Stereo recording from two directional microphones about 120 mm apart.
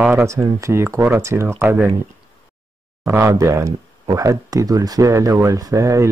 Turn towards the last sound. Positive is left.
turn(degrees=-25)  # may be behind; listen again after turning